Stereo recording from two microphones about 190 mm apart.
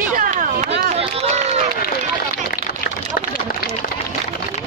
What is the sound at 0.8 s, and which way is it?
Run, 35° right (ahead or behind).